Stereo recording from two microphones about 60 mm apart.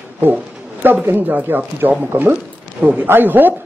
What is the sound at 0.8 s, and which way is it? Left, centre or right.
Speech, right.